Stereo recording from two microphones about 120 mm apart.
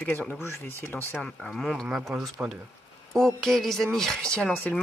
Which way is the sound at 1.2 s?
5° left (ahead or behind).